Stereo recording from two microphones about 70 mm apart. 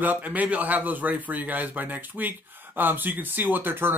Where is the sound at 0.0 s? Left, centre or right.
Right.